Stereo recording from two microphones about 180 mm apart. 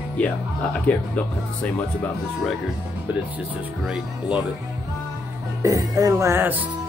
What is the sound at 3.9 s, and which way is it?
Music, 5° right (ahead or behind).